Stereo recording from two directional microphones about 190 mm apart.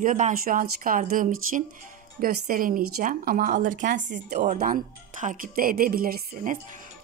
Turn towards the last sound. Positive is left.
turn(degrees=-45)  # may be behind; listen again after turning